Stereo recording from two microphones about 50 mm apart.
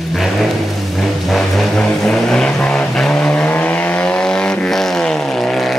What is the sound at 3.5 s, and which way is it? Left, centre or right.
Vehicle, left.